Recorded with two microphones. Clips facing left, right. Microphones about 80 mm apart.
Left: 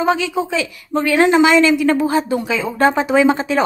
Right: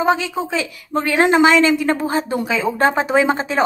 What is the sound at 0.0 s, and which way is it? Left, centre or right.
A woman's voice, right.